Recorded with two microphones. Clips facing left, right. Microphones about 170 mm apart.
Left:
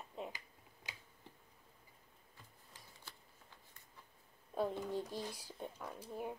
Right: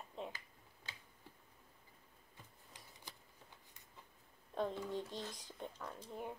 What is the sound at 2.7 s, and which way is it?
Shuffling cards, 15° right (ahead or behind).